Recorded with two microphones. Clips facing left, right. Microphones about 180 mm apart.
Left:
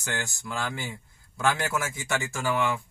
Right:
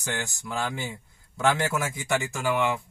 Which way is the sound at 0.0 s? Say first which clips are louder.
Right 1 dB; 15° right (ahead or behind).